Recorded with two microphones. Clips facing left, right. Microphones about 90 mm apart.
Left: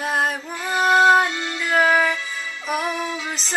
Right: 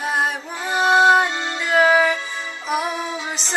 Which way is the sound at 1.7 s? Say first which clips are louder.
Right 2 dB; 5° right (ahead or behind).